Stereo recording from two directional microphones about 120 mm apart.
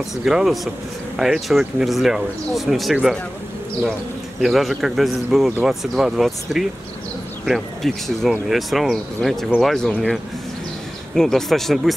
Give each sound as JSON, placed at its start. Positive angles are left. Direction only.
{"t": 0.2, "sound": "speech", "side_deg": -5}
{"t": 4.4, "sound": "speech", "side_deg": 0}